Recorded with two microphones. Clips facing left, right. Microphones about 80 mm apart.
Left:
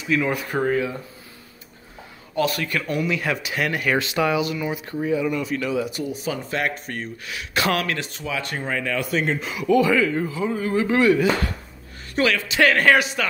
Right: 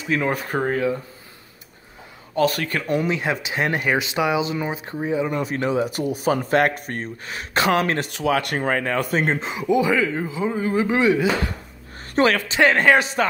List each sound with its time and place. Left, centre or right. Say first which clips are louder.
0.0 s speech: even; right
2.3 s speech: right 2 dB; right
2.9 s speech: right 3 dB; right
5.3 s speech: right 2 dB; right
5.9 s speech: right 6 dB; right
8.1 s speech: right 7 dB; right
9.5 s speech: left 3 dB; right
12.2 s speech: right 3 dB; right
12.5 s speech: even; right